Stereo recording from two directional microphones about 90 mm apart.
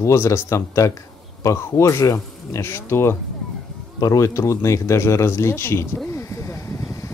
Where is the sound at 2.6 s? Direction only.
25° left (ahead or behind).